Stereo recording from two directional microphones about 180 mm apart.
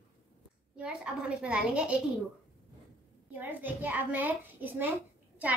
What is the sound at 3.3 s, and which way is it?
A child's voice, 10° right (ahead or behind).